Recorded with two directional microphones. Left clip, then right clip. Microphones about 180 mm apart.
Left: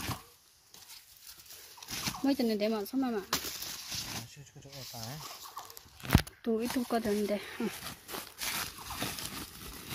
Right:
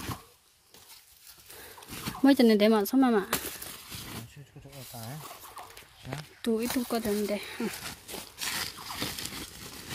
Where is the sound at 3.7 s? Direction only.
20° left (ahead or behind).